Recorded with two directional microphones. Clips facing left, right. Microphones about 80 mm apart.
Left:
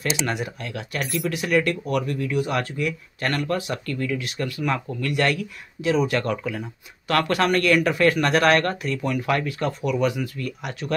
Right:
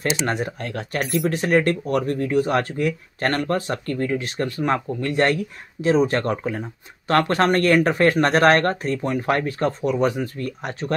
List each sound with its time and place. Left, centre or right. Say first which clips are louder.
0.3 s speech: right 3 dB; right